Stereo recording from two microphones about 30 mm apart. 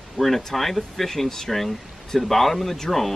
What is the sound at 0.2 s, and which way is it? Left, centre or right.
Speech, right.